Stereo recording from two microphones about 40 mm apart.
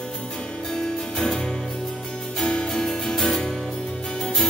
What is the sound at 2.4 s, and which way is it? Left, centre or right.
Music, left.